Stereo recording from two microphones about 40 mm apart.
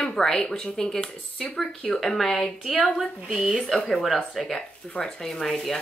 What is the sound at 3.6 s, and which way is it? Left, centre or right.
Speech, centre.